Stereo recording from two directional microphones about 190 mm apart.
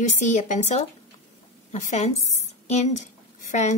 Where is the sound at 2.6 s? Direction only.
35° left (ahead or behind).